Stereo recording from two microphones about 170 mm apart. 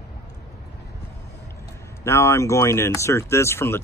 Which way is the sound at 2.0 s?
15° left (ahead or behind).